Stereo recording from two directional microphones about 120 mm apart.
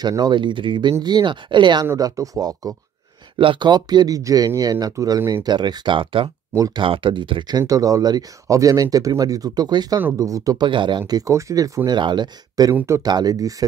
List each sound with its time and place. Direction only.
0.0 s speech: 35° right (ahead or behind)
1.9 s speech: 30° right (ahead or behind)
3.3 s speech: 45° right (ahead or behind)
6.5 s speech: 30° right (ahead or behind)
6.8 s speech: 45° right (ahead or behind)
9.9 s speech: 20° right (ahead or behind)
10.7 s speech: 40° right (ahead or behind)
12.7 s speech: 25° right (ahead or behind)